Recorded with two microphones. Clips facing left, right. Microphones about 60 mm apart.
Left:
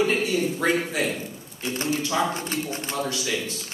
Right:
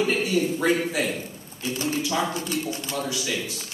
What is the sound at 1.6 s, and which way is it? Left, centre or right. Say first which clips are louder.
Speech: right 1 dB; left.